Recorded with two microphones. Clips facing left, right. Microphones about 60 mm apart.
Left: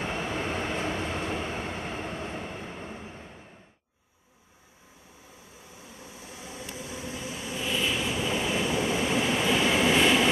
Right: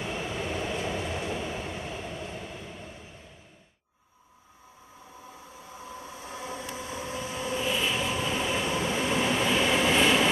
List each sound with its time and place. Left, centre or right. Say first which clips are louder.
0.0 s train: left 2 dB; left
6.0 s train: right 5 dB; right
7.6 s vehicle: left 1 dB; centre
8.0 s train: even; centre